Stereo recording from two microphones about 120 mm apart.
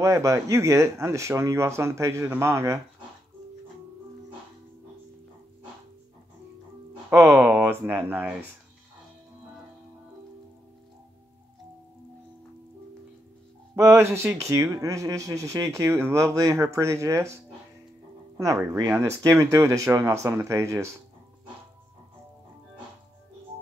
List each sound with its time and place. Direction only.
0.0 s speech: 25° right (ahead or behind)
7.1 s speech: 20° right (ahead or behind)
13.7 s speech: 25° right (ahead or behind)
18.4 s speech: 25° right (ahead or behind)